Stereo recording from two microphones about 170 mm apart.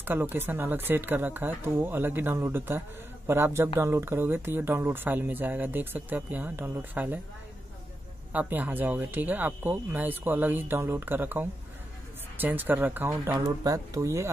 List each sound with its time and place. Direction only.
0.0 s speech: 10° right (ahead or behind)
8.3 s speech: 10° right (ahead or behind)